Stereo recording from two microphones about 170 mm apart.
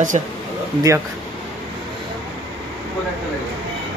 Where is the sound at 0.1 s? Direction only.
40° right (ahead or behind).